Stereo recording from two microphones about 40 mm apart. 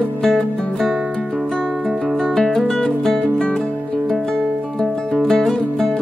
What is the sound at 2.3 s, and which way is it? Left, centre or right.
Music, centre.